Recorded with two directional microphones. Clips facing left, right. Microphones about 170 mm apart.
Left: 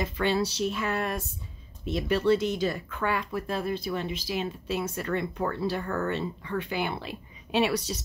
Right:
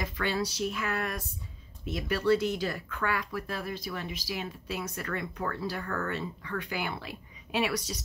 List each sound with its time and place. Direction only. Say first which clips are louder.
0.0 s speech: left 5 dB; 25° left (ahead or behind)